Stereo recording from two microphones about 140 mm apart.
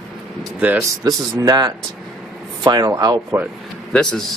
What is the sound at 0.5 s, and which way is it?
Speech, 10° right (ahead or behind).